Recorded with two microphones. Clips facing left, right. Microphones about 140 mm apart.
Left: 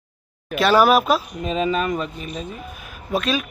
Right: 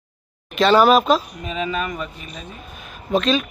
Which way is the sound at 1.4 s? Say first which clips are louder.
Left 4 dB; 30° left (ahead or behind).